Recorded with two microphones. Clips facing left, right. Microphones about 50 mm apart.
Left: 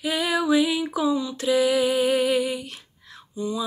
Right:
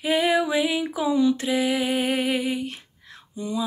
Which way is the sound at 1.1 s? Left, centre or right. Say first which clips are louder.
Right 6 dB; right.